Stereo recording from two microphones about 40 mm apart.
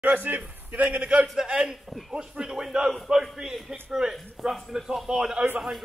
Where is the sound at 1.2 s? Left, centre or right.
Centre.